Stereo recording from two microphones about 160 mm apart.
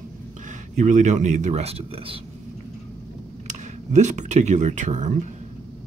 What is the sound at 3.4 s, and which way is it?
Speech, 50° right (ahead or behind).